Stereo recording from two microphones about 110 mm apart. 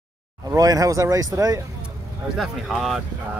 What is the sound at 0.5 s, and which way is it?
Speech, 30° right (ahead or behind).